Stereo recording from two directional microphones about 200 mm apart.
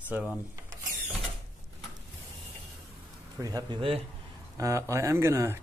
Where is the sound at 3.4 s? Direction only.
20° right (ahead or behind).